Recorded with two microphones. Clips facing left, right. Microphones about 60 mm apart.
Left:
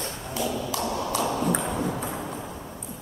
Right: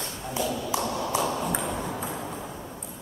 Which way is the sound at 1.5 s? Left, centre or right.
Centre.